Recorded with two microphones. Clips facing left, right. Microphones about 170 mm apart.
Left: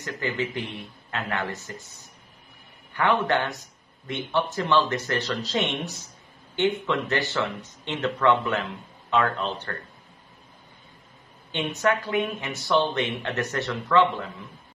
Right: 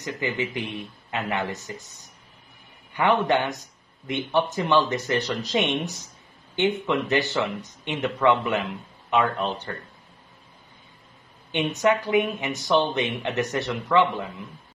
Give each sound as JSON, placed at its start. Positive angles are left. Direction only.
{"t": 0.0, "sound": "speech", "side_deg": -15}
{"t": 2.9, "sound": "speech", "side_deg": -15}
{"t": 11.8, "sound": "speech", "side_deg": -15}